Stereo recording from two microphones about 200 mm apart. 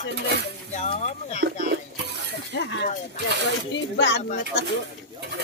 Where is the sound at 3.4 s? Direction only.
60° left (ahead or behind).